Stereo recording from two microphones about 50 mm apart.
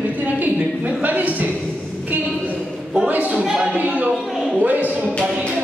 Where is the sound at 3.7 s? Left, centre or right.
Right.